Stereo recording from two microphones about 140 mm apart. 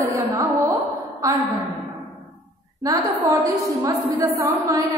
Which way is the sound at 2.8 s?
25° right (ahead or behind).